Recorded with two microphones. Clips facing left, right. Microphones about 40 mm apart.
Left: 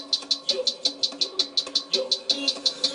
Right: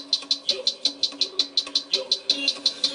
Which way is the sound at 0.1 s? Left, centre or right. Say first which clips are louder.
Right 1 dB; right.